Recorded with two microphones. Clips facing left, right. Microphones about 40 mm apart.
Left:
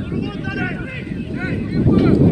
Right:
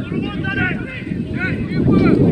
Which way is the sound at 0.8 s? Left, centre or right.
Centre.